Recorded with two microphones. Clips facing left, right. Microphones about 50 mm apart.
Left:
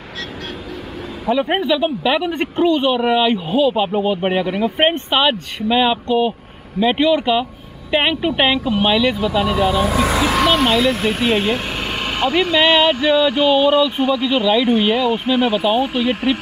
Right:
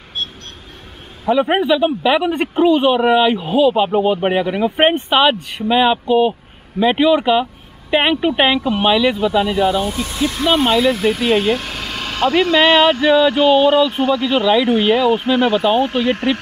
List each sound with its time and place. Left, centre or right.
1.2 s speech: centre
10.1 s speech: left
10.8 s speech: left
11.1 s speech: centre
12.4 s speech: centre